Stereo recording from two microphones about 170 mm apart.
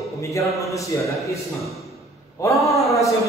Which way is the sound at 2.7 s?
20° left (ahead or behind).